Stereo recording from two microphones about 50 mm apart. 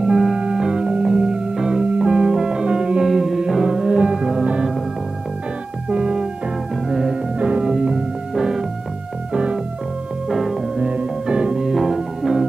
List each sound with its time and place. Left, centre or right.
0.0 s music: centre
5.9 s music: centre
7.3 s music: right
10.2 s music: centre
10.8 s music: right
11.5 s music: centre